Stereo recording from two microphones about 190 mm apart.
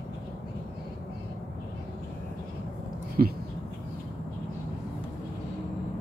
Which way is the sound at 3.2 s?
45° right (ahead or behind).